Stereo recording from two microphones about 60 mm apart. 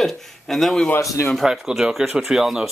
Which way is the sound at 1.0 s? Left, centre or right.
Left.